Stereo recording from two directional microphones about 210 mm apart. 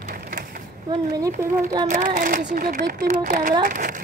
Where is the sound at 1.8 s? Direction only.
40° right (ahead or behind).